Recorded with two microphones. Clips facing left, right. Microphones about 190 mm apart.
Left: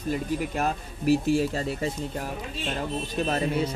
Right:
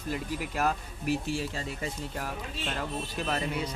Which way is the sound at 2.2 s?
25° left (ahead or behind).